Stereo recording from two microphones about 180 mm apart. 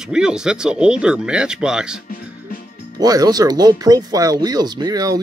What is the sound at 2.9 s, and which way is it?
Speech, 20° right (ahead or behind).